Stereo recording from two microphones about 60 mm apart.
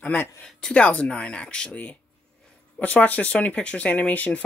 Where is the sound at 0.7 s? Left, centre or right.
Left.